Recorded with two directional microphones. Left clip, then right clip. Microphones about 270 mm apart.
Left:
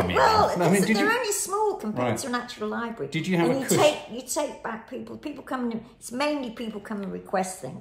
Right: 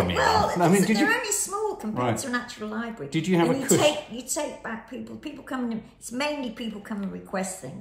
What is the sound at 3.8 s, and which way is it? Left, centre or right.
A woman's voice, centre.